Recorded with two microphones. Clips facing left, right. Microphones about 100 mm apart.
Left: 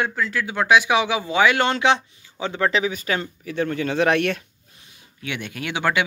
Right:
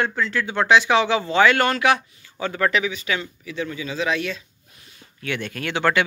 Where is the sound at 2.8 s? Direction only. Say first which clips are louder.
Left 2 dB; 40° left (ahead or behind); by 4.4 s 60° left (ahead or behind).